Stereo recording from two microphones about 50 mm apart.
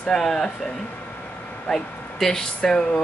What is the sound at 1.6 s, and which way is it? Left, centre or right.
Speech, centre.